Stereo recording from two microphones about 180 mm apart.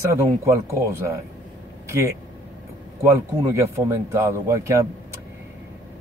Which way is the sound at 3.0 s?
15° right (ahead or behind).